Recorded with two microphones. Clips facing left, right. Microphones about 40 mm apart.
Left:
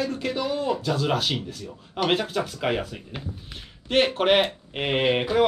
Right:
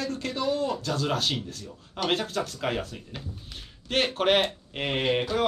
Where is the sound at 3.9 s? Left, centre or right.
Centre.